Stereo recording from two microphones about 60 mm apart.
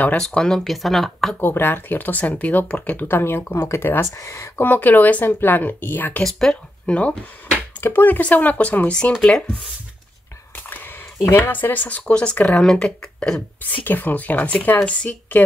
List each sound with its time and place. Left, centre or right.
0.2 s speech: centre
1.4 s speech: left
3.1 s a woman's voice: left
4.6 s a woman's voice: left
6.2 s speech: centre
6.9 s speech: centre
7.8 s speech: left
10.5 s a sound: left
11.3 s speech: left; by 13.4 s centre
13.6 s speech: left